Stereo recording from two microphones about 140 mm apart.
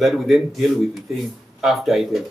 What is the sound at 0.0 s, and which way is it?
Speech, centre (ahead or behind).